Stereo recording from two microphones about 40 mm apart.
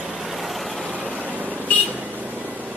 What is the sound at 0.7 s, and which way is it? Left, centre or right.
Vehicle, right.